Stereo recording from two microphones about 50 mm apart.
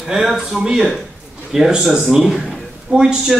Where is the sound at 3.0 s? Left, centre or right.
Centre.